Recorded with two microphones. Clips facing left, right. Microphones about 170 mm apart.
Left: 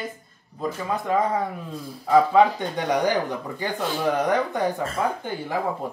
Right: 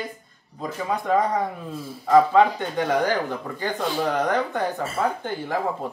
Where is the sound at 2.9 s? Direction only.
15° left (ahead or behind).